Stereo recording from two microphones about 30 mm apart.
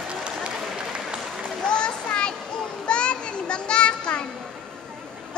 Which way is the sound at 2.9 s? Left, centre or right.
Left.